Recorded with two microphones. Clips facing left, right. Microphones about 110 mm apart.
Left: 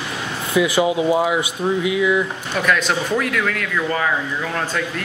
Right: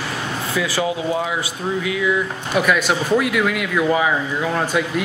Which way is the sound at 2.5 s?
5° right (ahead or behind).